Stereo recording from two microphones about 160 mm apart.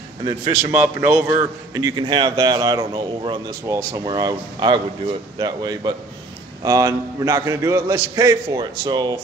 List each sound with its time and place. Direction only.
0.2 s a man's voice: 30° right (ahead or behind)
0.7 s speech: 15° right (ahead or behind)
1.7 s a man's voice: 25° right (ahead or behind)
8.5 s a man's voice: 30° right (ahead or behind)